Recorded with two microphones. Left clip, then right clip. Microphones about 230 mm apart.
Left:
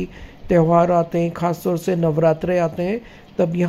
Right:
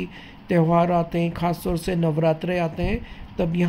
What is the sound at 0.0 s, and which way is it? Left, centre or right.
Speech, centre.